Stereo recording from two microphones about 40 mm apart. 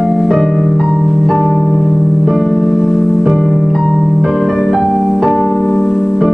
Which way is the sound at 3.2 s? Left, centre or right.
Centre.